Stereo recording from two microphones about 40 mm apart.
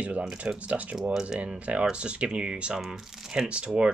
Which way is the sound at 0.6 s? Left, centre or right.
Right.